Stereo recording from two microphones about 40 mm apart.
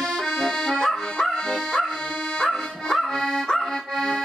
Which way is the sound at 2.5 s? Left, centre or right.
Centre.